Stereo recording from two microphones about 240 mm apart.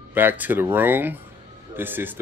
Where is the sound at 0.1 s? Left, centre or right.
Centre.